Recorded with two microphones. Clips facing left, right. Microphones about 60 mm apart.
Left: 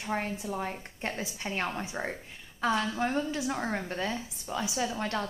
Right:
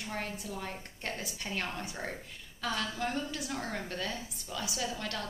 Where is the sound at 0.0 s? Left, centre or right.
Left.